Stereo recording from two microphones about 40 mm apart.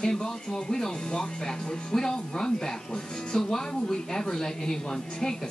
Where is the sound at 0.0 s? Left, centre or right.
Centre.